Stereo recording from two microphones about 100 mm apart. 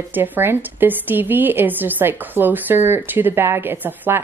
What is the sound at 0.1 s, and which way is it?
Speech, 20° right (ahead or behind).